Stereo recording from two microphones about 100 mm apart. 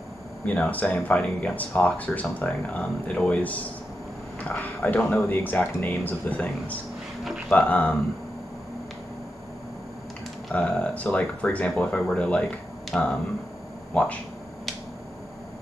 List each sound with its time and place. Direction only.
0.5 s speech: 15° left (ahead or behind)
10.5 s speech: 10° left (ahead or behind)